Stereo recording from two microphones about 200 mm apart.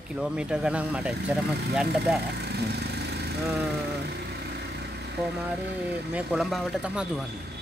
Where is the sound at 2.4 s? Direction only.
55° right (ahead or behind).